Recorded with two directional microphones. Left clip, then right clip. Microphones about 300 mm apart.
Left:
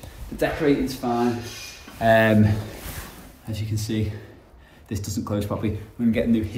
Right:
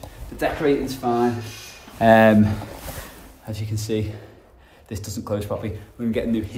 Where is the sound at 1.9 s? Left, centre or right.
Right.